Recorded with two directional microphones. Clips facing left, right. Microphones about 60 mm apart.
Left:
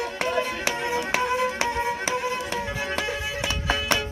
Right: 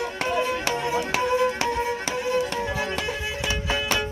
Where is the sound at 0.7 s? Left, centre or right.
Left.